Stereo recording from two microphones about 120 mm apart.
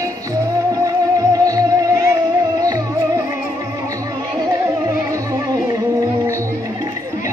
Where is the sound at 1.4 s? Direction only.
30° right (ahead or behind).